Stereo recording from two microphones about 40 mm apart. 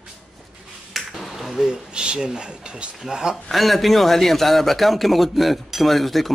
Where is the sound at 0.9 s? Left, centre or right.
Centre.